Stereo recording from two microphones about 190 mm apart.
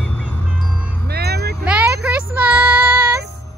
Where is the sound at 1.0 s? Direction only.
55° right (ahead or behind).